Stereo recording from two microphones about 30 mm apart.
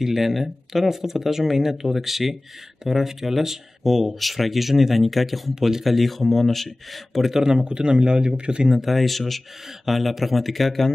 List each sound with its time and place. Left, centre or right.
0.0 s speech: centre
5.5 s speech: centre
5.9 s speech: centre
7.2 s speech: centre
7.6 s speech: right
8.6 s speech: centre
8.9 s speech: centre